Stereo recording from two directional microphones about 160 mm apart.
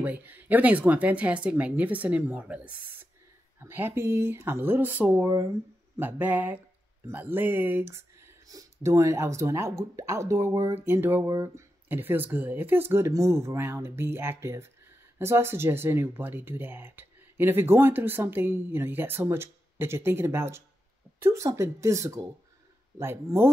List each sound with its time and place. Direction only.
0.0 s speech: 10° right (ahead or behind)